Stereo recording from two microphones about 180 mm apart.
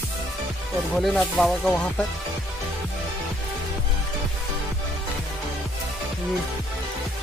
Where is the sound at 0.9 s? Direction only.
Centre (ahead or behind).